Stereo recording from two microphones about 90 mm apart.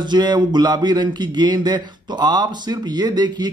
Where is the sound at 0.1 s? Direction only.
55° right (ahead or behind).